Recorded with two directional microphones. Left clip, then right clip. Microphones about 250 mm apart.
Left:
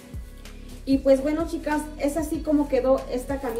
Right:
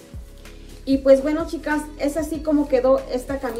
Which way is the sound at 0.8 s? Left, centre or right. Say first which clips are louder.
Right 4 dB; centre.